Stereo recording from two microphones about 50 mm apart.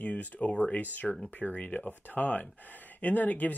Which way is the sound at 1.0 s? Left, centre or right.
Centre.